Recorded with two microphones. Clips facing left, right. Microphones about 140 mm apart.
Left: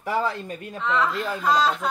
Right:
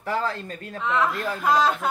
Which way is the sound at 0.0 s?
10° left (ahead or behind).